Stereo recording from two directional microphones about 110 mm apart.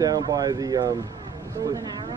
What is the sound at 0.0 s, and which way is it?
Speech, 35° right (ahead or behind).